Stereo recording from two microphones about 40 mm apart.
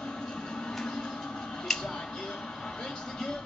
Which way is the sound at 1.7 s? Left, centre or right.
Centre.